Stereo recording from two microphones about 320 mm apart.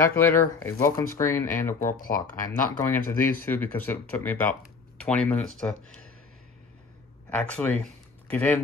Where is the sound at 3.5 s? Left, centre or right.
Centre.